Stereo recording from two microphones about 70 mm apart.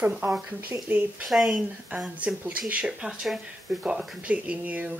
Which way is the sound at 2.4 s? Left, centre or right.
Right.